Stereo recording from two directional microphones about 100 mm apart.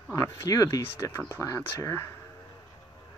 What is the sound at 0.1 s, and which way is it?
Speech, 35° left (ahead or behind).